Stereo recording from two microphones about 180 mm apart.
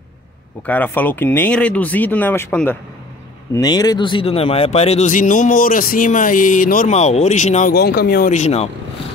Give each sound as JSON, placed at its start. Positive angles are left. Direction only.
{"t": 0.7, "sound": "speech", "side_deg": 10}
{"t": 3.5, "sound": "speech", "side_deg": 20}
{"t": 7.7, "sound": "speech", "side_deg": 60}
{"t": 8.3, "sound": "speech", "side_deg": 40}